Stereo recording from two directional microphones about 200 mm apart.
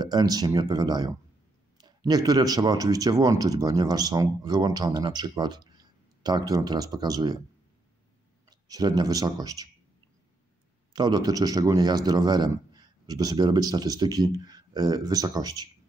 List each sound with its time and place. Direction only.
0.0 s speech: 20° right (ahead or behind)
8.5 s a man's voice: 20° right (ahead or behind)
10.9 s speech: 20° right (ahead or behind)